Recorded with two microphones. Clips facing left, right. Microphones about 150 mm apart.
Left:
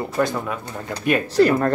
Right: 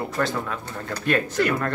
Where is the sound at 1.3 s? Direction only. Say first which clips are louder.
Left 7 dB; 35° left (ahead or behind).